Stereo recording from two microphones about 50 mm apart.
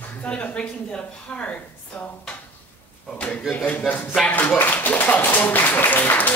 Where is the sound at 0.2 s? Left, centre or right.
Left.